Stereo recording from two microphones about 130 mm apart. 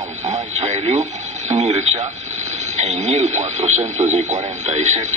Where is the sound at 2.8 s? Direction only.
60° right (ahead or behind).